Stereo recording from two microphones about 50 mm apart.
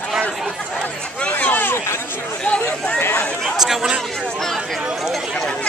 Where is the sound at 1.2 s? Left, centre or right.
Left.